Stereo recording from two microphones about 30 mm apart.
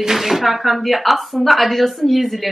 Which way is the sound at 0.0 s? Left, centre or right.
Centre.